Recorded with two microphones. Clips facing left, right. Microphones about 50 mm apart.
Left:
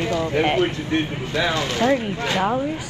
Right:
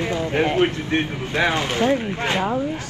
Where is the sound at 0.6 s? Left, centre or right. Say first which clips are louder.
Right 1 dB; right.